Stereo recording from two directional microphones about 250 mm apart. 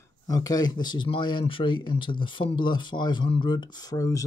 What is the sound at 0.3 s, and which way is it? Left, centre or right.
Speech, centre.